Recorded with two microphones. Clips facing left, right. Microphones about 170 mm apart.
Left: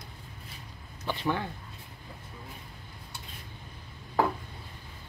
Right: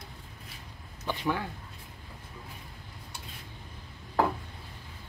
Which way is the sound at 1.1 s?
10° right (ahead or behind).